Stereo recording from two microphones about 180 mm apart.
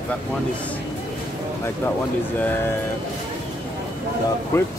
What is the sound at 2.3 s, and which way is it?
Speech, 10° left (ahead or behind).